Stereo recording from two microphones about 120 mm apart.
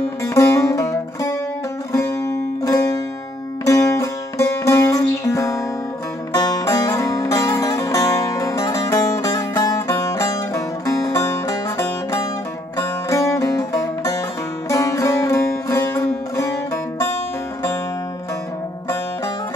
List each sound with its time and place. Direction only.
0.2 s music: 25° left (ahead or behind)